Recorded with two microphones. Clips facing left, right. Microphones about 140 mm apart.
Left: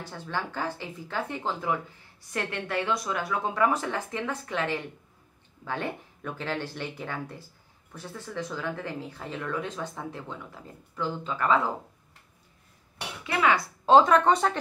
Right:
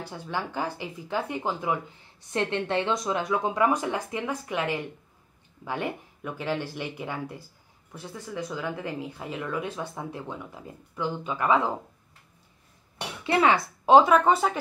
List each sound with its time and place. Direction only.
0.0 s speech: 15° right (ahead or behind)
13.3 s speech: 30° right (ahead or behind)
13.8 s speech: 10° right (ahead or behind)